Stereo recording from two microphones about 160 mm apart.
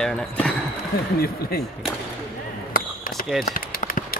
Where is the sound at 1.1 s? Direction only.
70° left (ahead or behind).